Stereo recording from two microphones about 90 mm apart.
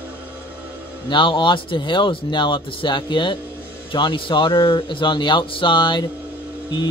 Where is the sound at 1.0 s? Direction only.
65° left (ahead or behind).